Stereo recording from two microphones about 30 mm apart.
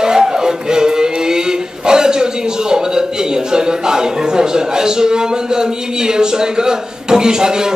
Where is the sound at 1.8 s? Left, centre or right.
Right.